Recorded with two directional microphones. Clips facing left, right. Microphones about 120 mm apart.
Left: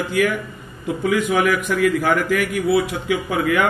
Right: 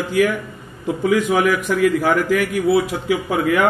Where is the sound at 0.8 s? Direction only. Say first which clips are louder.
Right 2 dB; 30° right (ahead or behind).